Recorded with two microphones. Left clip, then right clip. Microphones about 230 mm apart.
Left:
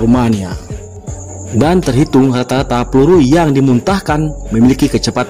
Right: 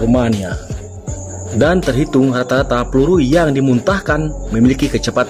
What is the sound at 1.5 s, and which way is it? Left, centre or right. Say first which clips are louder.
Speech: left 1 dB; left.